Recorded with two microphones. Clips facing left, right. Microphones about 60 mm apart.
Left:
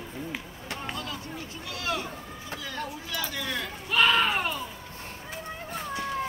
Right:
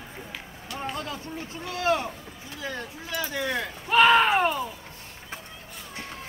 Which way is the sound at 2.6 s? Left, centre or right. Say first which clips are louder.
Right 3 dB; right.